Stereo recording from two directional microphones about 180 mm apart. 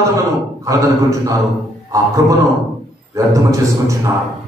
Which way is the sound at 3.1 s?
15° right (ahead or behind).